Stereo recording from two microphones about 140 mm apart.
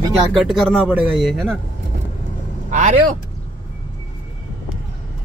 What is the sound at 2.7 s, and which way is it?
Speech, 55° right (ahead or behind).